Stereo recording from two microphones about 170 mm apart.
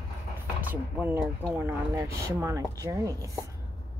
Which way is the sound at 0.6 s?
10° right (ahead or behind).